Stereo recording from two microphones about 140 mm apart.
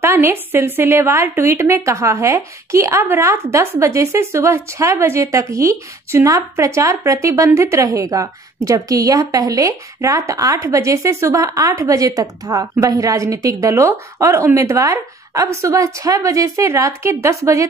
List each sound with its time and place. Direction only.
0.0 s speech: 15° right (ahead or behind)